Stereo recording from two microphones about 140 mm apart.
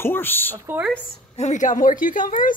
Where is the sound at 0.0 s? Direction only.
15° left (ahead or behind).